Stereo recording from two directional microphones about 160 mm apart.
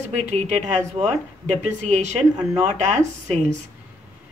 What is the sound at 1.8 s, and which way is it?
A woman's voice, 45° right (ahead or behind).